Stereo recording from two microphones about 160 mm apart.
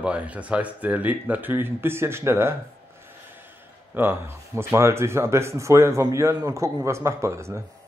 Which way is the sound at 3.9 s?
15° right (ahead or behind).